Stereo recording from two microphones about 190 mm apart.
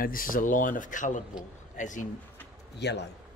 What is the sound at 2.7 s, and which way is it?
Speech, 65° left (ahead or behind).